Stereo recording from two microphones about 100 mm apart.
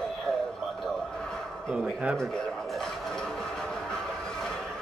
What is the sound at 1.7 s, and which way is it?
Speech, 5° right (ahead or behind).